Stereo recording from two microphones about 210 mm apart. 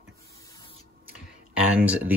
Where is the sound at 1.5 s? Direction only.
10° right (ahead or behind).